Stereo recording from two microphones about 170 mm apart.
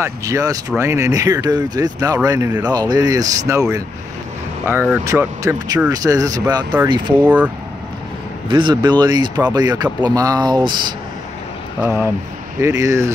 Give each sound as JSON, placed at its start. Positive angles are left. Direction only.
{"t": 0.0, "sound": "speech", "side_deg": -20}
{"t": 4.6, "sound": "speech", "side_deg": -10}
{"t": 7.2, "sound": "speech", "side_deg": -10}
{"t": 8.5, "sound": "speech", "side_deg": -25}
{"t": 11.8, "sound": "speech", "side_deg": -15}